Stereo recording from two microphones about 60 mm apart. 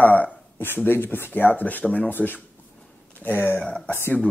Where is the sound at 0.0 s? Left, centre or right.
Left.